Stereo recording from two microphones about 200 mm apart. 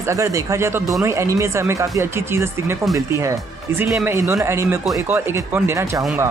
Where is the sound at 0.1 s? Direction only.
15° right (ahead or behind).